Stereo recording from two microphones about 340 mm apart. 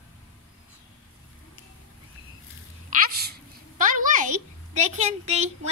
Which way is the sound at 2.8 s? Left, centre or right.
Right.